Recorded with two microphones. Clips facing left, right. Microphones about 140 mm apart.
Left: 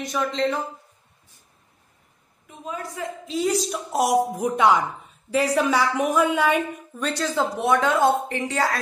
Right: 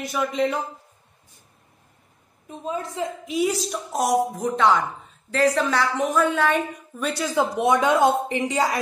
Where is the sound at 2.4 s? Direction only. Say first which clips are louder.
Right 4 dB; 25° right (ahead or behind).